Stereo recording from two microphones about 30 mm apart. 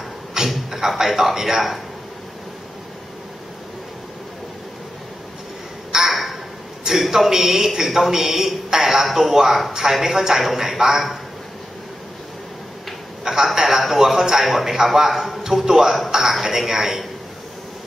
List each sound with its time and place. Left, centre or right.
0.7 s a man's voice: centre
5.9 s a sound: centre
7.0 s a man's voice: centre
10.4 s a man's voice: centre
13.2 s a sound: centre
13.6 s a man's voice: centre